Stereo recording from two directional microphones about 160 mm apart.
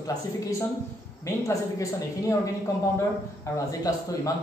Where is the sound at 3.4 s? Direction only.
20° left (ahead or behind).